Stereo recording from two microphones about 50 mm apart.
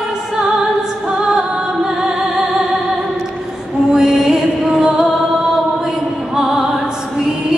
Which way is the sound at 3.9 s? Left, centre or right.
Centre.